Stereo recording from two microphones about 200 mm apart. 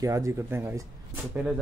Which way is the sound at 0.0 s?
15° right (ahead or behind).